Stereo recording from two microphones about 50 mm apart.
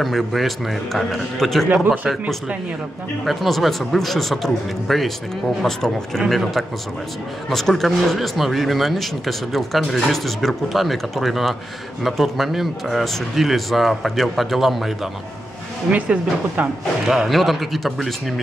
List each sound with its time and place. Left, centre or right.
0.0 s speech: centre
15.9 s speech: right
17.0 s speech: centre